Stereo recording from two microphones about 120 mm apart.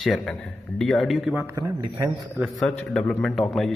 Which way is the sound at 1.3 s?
25° right (ahead or behind).